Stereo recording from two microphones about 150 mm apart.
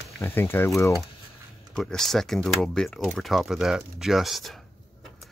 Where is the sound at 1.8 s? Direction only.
5° left (ahead or behind).